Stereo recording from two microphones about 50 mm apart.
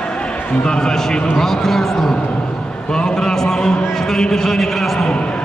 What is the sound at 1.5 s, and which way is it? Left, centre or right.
Speech, centre.